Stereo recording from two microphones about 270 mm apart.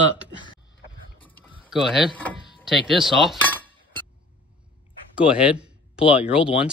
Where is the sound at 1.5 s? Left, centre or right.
Centre.